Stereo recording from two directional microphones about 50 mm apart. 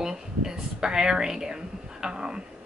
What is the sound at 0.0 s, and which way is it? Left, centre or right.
Speech, centre.